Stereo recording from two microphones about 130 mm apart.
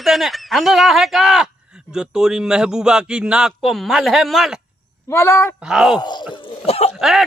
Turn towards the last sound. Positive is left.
turn(degrees=0)  # may be behind; listen again after turning